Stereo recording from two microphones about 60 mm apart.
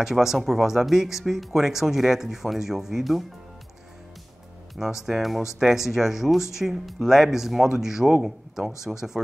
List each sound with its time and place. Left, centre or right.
0.0 s speech: centre
4.7 s speech: centre